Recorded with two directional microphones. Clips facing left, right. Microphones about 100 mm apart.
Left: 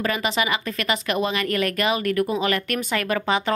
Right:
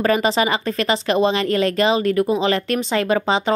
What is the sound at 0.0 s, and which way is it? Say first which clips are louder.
A woman's voice: right 6 dB; 35° right (ahead or behind).